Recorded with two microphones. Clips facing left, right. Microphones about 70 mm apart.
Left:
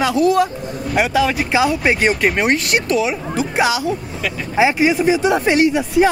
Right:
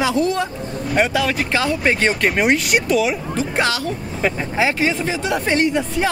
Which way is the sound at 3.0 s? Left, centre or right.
Centre.